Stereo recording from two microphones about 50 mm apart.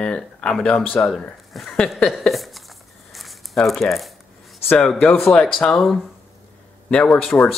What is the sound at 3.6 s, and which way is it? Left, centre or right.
Speech, centre.